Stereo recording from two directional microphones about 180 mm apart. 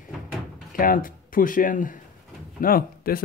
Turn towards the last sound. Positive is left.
turn(degrees=55)  # may be behind; listen again after turning